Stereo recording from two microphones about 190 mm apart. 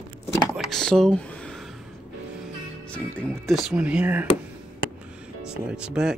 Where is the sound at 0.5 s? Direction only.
Centre (ahead or behind).